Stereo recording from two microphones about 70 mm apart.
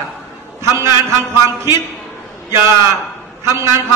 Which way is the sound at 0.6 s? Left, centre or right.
Right.